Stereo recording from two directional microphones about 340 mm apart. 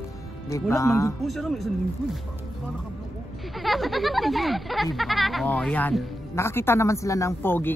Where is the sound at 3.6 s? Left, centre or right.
Centre.